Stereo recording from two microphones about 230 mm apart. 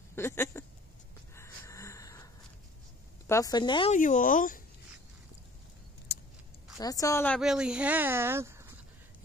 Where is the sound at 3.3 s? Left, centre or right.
Centre.